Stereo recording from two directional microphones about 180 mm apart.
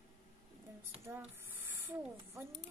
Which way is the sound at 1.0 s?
10° right (ahead or behind).